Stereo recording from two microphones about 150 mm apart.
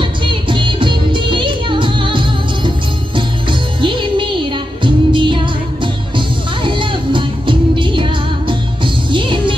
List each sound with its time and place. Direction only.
0.3 s music: 35° right (ahead or behind)